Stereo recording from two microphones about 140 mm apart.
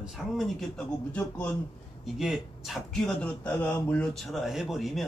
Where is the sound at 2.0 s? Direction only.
Centre (ahead or behind).